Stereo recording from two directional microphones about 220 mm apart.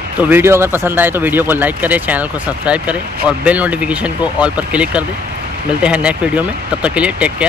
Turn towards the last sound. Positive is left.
turn(degrees=-5)  # may be behind; listen again after turning